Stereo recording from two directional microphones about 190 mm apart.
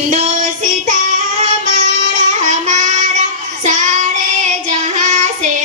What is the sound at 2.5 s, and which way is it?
Child singing, 40° right (ahead or behind).